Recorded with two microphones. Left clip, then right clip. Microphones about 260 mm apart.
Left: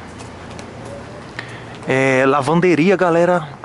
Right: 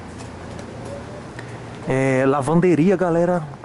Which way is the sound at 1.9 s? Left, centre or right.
Centre.